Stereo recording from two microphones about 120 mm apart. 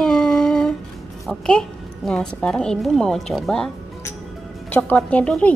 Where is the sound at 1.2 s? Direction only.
5° left (ahead or behind).